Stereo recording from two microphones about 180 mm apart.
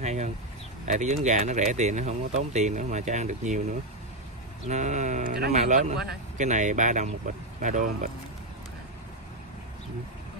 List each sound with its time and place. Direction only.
0.0 s speech: 40° right (ahead or behind)
4.6 s speech: 40° right (ahead or behind)